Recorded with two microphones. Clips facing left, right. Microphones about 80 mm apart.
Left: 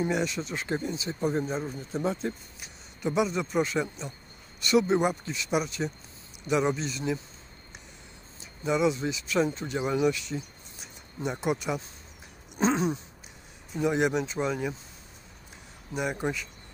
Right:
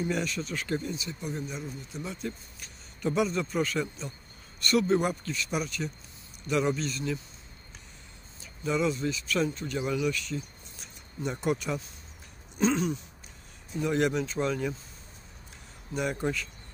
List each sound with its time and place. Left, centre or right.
0.1 s speech: centre
2.6 s a man's voice: centre
8.4 s speech: centre
12.5 s speech: left
13.7 s speech: centre
15.9 s speech: centre